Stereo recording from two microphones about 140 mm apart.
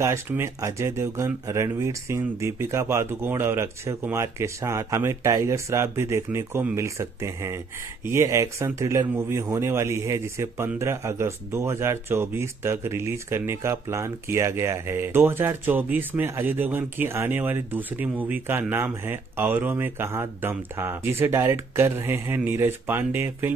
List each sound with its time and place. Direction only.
0.0 s speech: 20° right (ahead or behind)